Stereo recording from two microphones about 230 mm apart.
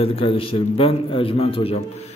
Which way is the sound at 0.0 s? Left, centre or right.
Left.